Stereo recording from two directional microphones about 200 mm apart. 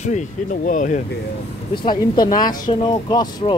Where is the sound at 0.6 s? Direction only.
40° left (ahead or behind).